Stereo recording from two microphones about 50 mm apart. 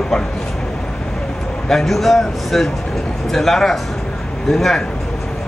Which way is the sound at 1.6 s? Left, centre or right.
Centre.